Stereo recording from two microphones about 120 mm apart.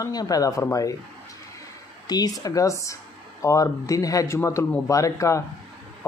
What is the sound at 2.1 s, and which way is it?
Speech, 35° left (ahead or behind).